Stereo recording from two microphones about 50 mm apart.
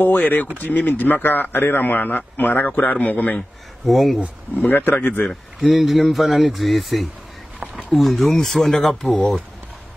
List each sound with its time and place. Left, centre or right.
0.0 s speech: left
3.8 s speech: centre
4.6 s speech: left
5.7 s speech: centre
9.0 s speech: centre